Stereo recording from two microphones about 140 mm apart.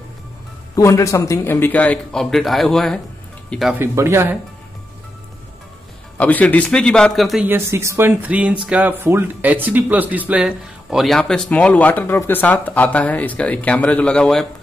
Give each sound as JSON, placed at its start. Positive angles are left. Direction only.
{"t": 0.7, "sound": "a man's voice", "side_deg": 20}
{"t": 3.7, "sound": "speech", "side_deg": -15}
{"t": 6.1, "sound": "a man's voice", "side_deg": 10}
{"t": 7.4, "sound": "speech", "side_deg": -20}